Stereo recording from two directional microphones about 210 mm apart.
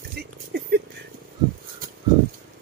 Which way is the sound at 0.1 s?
50° right (ahead or behind).